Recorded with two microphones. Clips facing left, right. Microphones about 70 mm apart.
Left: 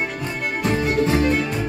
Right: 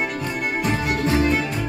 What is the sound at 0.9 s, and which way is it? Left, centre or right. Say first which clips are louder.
Music: left 3 dB; left.